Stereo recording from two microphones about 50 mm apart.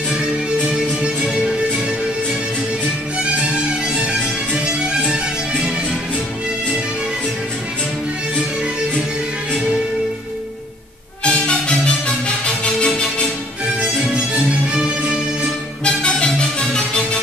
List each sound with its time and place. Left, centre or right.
0.7 s music: centre
3.2 s music: centre
11.2 s music: left
13.7 s music: centre
15.8 s music: left